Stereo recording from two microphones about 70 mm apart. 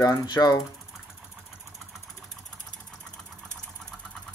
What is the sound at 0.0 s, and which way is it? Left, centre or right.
Mechanisms, left.